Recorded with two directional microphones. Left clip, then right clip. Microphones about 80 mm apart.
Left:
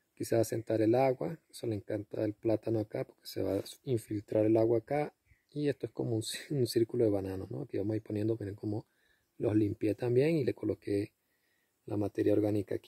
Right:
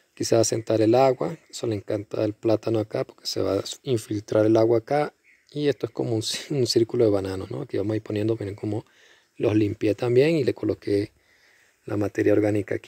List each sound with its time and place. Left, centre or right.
0.2 s speech: centre